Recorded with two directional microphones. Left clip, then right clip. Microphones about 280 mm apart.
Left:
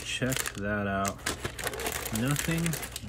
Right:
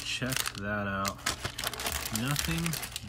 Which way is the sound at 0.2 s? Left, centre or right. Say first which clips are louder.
Left 2 dB; centre.